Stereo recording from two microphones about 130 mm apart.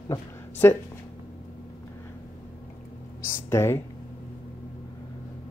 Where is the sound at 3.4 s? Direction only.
20° left (ahead or behind).